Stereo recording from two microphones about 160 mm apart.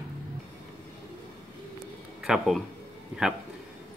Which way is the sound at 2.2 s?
Centre (ahead or behind).